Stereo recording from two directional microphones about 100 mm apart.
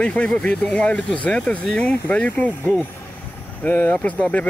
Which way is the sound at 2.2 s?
15° left (ahead or behind).